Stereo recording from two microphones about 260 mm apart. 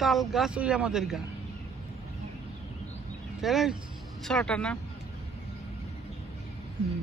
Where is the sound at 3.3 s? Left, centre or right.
Centre.